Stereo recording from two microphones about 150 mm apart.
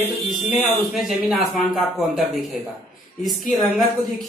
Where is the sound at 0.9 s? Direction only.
Centre (ahead or behind).